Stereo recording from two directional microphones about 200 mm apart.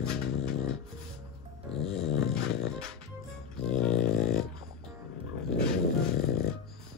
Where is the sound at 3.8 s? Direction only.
5° left (ahead or behind).